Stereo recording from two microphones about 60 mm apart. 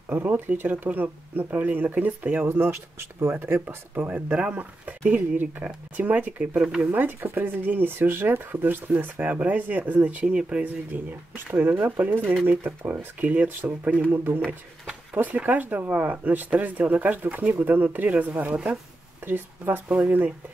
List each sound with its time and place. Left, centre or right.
0.1 s speech: right
2.4 s speech: right
3.6 s speech: right